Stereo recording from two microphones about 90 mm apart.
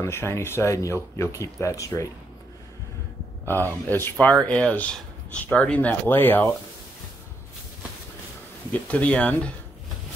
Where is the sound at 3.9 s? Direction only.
20° left (ahead or behind).